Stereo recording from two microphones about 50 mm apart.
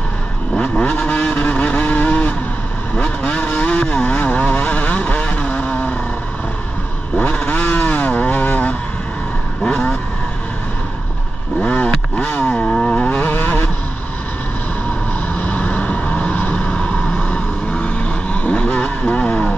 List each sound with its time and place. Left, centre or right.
0.6 s vehicle: left
3.0 s vehicle: left
7.2 s vehicle: left
11.6 s vehicle: left
12.6 s vehicle: centre
13.1 s vehicle: left
15.3 s vehicle: left
16.5 s vehicle: left